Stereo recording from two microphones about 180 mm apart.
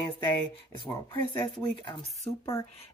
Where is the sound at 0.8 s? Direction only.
25° left (ahead or behind).